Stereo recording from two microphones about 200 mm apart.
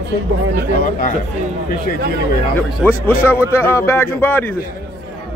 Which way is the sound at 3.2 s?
10° left (ahead or behind).